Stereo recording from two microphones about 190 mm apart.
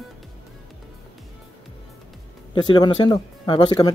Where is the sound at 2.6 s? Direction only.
25° left (ahead or behind).